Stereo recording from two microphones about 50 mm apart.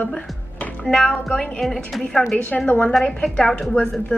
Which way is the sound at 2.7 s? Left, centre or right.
Left.